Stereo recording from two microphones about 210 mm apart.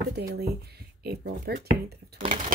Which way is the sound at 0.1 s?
50° right (ahead or behind).